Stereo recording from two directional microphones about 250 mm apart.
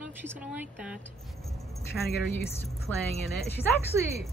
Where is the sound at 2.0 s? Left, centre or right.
Centre.